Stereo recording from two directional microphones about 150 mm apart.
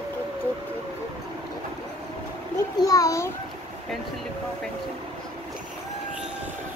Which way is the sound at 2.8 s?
20° left (ahead or behind).